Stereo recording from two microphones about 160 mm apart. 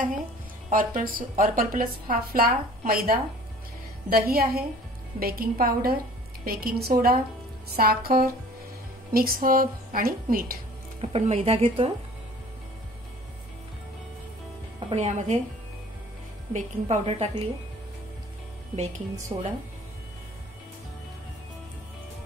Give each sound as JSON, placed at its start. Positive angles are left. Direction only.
{"t": 0.7, "sound": "a woman's voice", "side_deg": -60}
{"t": 11.0, "sound": "speech", "side_deg": -40}
{"t": 14.9, "sound": "a woman's voice", "side_deg": -45}
{"t": 16.5, "sound": "speech", "side_deg": -45}
{"t": 19.3, "sound": "speech", "side_deg": -30}